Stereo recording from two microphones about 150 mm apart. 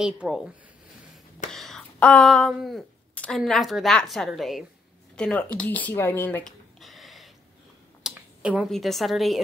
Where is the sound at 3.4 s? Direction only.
Centre (ahead or behind).